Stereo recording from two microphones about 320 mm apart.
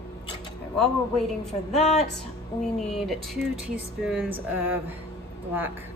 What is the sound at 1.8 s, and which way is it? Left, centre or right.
Speech, left.